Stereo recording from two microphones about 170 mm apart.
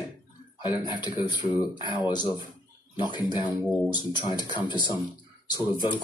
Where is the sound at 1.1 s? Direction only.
25° left (ahead or behind).